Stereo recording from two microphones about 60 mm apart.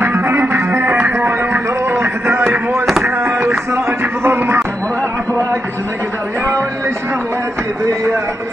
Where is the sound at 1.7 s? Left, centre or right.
Right.